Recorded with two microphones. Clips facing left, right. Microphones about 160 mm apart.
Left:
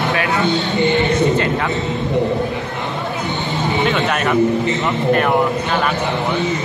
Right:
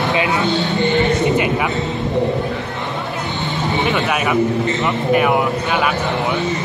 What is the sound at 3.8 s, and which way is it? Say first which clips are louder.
A man's voice: even; 5° right (ahead or behind).